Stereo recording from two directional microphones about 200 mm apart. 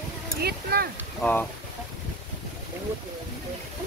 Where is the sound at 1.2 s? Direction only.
10° left (ahead or behind).